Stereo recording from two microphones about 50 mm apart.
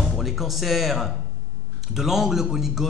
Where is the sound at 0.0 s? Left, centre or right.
Centre.